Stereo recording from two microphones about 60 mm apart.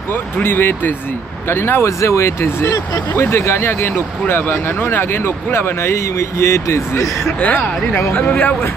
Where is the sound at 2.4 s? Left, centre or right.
Left.